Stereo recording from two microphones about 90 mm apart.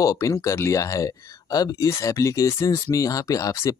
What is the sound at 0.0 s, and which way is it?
Speech, 40° left (ahead or behind).